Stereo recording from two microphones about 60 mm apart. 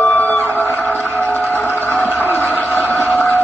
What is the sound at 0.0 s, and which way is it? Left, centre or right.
Music, left.